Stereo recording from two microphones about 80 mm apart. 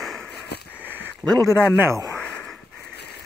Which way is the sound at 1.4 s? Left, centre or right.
Right.